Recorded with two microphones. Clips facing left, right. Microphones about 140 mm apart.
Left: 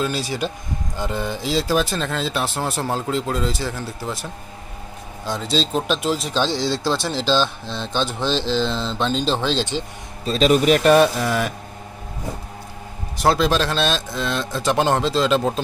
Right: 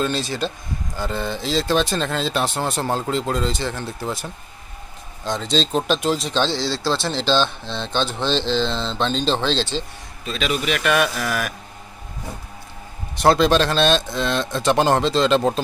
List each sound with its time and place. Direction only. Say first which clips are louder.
0.0 s speech: even; 10° left (ahead or behind)
10.2 s a man's voice: left 8 dB; 35° left (ahead or behind)
11.1 s speech: left 3 dB; 20° left (ahead or behind)
13.2 s speech: right 2 dB; centre (ahead or behind)